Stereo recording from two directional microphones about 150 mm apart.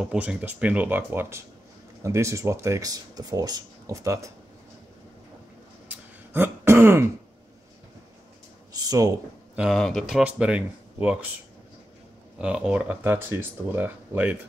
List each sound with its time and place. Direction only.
0.0 s speech: 5° right (ahead or behind)
5.9 s throat clearing: 15° right (ahead or behind)
9.6 s speech: centre (ahead or behind)
12.4 s speech: 5° right (ahead or behind)